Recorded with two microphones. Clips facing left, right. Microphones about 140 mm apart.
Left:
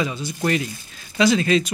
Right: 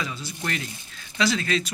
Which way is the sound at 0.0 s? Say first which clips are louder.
Left 8 dB; 20° left (ahead or behind).